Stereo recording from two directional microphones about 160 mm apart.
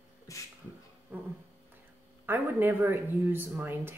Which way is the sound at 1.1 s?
10° right (ahead or behind).